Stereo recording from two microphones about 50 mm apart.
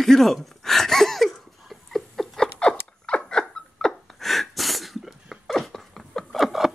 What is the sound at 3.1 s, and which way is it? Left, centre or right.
Dog, centre.